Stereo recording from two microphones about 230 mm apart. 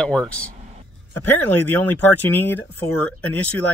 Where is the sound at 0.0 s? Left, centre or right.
Centre.